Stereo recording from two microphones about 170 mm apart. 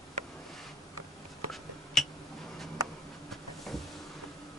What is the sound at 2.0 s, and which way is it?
Tick-tock, centre (ahead or behind).